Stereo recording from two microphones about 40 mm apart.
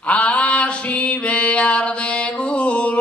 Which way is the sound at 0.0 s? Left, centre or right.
Left.